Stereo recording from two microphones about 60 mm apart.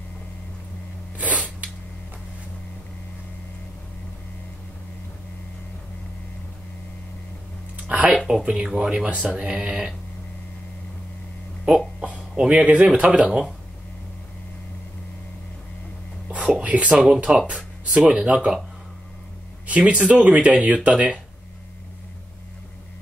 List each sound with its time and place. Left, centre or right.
1.1 s sneeze: right
7.7 s a sound: right
8.3 s speech: centre
12.0 s a sound: right
12.9 s speech: right
16.3 s whispering: right
16.6 s speech: right
19.6 s speech: right